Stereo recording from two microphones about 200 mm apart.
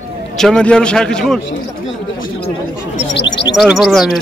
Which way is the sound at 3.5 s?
Centre (ahead or behind).